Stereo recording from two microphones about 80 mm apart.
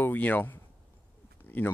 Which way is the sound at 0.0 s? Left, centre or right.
Left.